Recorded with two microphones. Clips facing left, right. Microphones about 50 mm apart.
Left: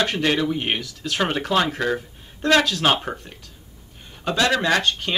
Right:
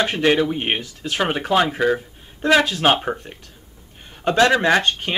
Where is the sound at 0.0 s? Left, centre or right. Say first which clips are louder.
Right 3 dB; centre.